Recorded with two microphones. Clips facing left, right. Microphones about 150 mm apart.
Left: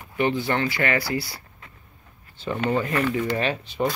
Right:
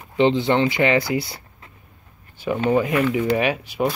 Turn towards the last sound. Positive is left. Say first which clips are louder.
# right 3 dB
turn(degrees=-10)  # may be behind; listen again after turning